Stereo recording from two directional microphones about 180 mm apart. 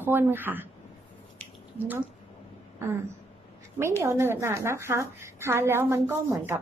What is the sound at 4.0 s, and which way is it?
A woman's voice, 15° right (ahead or behind).